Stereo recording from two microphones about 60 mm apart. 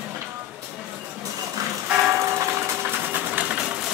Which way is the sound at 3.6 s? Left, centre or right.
Centre.